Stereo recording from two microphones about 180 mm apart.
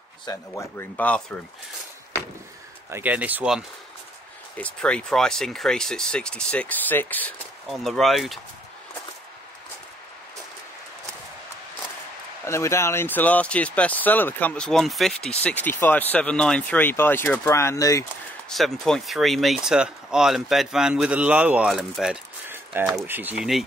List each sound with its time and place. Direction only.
0.2 s speech: 20° left (ahead or behind)
2.9 s speech: 10° right (ahead or behind)
4.6 s speech: 5° left (ahead or behind)
12.4 s speech: 15° left (ahead or behind)
18.5 s speech: centre (ahead or behind)